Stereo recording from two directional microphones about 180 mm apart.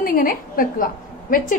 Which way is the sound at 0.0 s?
50° left (ahead or behind).